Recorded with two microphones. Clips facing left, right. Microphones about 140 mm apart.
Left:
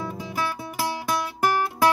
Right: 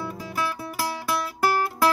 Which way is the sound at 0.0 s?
20° left (ahead or behind).